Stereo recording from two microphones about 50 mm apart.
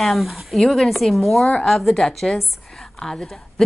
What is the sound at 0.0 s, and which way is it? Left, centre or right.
A woman's voice, centre.